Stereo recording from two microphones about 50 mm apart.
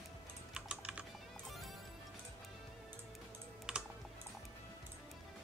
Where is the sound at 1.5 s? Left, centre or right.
Centre.